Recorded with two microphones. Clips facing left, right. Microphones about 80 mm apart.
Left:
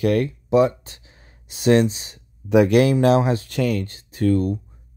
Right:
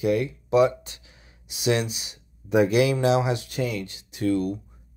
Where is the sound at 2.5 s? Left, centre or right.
Left.